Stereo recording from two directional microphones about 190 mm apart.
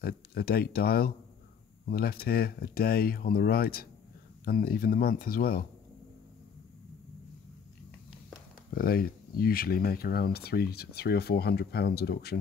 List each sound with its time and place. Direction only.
0.0 s speech: 55° left (ahead or behind)
8.7 s speech: 50° left (ahead or behind)